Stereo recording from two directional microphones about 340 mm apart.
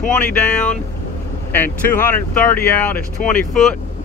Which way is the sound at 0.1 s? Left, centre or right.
Centre.